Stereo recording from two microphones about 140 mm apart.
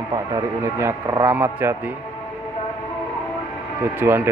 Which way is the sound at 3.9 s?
15° right (ahead or behind).